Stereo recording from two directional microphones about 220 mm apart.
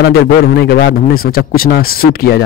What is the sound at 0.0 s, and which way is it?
A man's voice, 45° left (ahead or behind).